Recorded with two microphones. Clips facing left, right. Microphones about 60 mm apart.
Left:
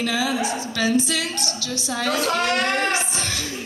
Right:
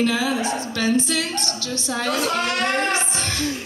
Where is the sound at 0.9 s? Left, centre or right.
Right.